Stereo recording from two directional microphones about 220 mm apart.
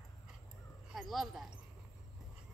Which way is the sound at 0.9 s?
Centre (ahead or behind).